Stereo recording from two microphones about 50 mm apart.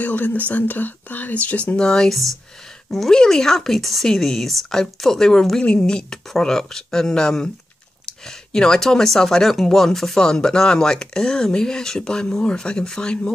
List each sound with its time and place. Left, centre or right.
0.0 s speech: left
1.8 s speech: centre
5.6 s speech: centre
8.5 s speech: centre